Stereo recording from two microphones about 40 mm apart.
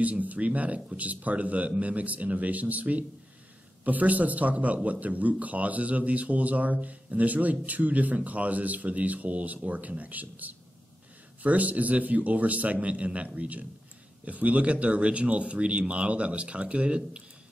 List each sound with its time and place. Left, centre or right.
0.0 s speech: right